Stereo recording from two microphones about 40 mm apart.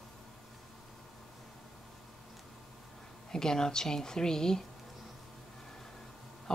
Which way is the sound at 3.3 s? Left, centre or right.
Centre.